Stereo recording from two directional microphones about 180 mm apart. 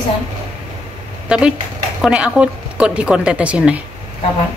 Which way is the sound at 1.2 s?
5° right (ahead or behind).